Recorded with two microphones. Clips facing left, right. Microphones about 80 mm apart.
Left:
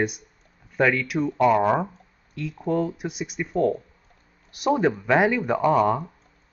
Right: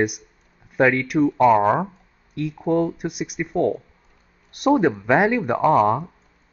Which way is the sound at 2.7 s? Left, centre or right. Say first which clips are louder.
Right 4 dB; centre.